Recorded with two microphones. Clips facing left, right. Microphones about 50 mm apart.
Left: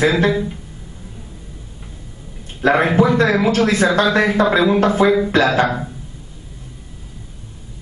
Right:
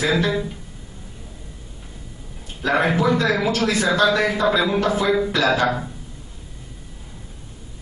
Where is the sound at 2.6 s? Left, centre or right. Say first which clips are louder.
Left 5 dB; left.